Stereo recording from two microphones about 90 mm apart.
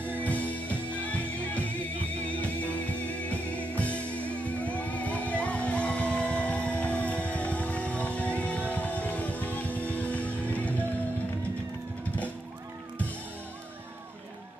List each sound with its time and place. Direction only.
0.1 s music: 15° left (ahead or behind)